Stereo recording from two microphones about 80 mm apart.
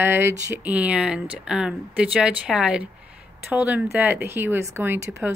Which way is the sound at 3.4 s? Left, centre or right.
Right.